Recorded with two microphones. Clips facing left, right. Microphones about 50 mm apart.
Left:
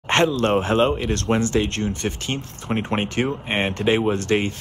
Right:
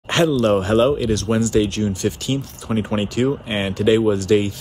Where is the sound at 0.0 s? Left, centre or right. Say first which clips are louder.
Right 2 dB; left.